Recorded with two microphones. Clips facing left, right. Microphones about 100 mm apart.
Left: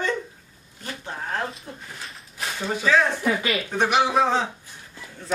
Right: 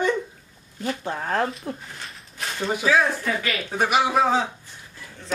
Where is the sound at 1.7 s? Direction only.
90° right.